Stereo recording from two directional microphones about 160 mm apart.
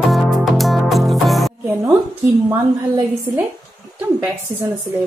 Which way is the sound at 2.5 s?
20° right (ahead or behind).